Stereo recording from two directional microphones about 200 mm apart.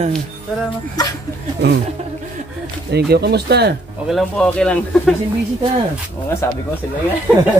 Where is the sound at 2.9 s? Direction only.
55° right (ahead or behind).